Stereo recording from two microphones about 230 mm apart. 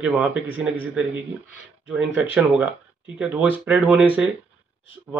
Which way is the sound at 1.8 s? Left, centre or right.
Centre.